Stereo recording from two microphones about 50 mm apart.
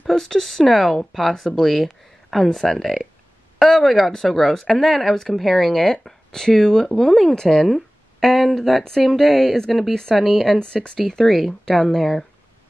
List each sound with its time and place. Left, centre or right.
0.0 s speech: centre
10.6 s speech: centre
11.0 s speech: centre